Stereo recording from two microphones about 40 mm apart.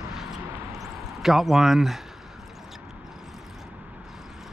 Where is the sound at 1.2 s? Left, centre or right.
Centre.